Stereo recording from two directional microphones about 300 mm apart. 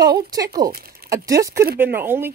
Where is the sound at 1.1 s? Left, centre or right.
Centre.